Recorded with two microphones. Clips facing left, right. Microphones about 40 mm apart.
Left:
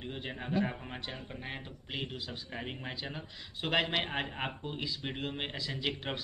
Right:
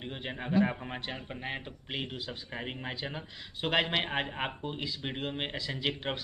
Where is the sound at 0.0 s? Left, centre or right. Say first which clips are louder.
Right 2 dB; right.